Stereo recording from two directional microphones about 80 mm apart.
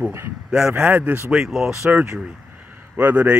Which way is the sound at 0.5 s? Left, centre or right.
Centre.